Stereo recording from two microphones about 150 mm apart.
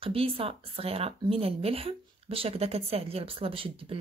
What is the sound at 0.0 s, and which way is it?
Speech, 40° right (ahead or behind).